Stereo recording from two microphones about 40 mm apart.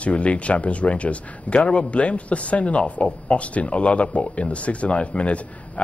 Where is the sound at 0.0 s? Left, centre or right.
Left.